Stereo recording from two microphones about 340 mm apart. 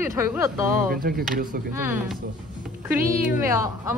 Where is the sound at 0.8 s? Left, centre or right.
Right.